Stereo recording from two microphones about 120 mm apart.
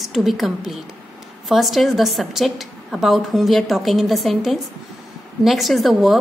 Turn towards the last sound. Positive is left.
turn(degrees=0)  # may be behind; listen again after turning